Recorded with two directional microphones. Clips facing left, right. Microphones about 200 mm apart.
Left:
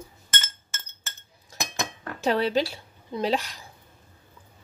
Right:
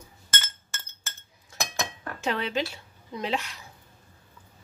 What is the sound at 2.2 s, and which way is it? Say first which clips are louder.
A woman's voice: left 5 dB; 35° left (ahead or behind).